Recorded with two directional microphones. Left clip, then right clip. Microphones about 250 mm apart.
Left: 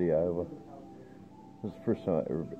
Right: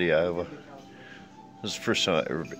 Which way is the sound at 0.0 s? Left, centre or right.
Centre.